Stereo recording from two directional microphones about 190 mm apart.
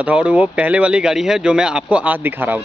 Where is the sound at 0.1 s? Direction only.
5° right (ahead or behind).